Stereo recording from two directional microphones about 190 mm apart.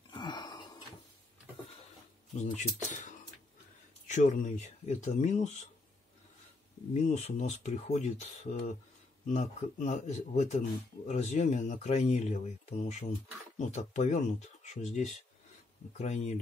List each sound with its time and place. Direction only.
0.1 s a sound: 25° left (ahead or behind)
2.3 s speech: 40° left (ahead or behind)
4.1 s speech: 40° left (ahead or behind)
6.9 s speech: 35° left (ahead or behind)